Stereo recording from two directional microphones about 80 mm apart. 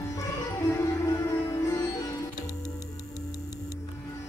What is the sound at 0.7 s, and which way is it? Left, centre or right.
Sitar, left.